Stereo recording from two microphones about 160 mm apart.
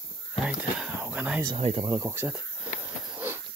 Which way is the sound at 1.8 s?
25° right (ahead or behind).